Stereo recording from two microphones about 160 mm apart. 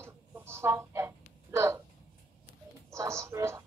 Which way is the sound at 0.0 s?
15° right (ahead or behind).